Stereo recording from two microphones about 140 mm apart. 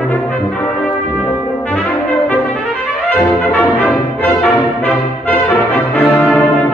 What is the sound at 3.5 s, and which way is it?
Music, 10° left (ahead or behind).